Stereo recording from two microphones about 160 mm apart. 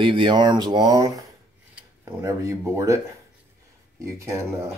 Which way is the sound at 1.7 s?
15° right (ahead or behind).